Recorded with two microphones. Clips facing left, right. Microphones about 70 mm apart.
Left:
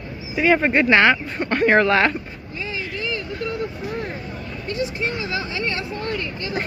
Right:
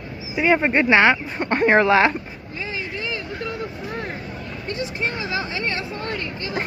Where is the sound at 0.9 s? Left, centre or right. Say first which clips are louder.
Even; centre.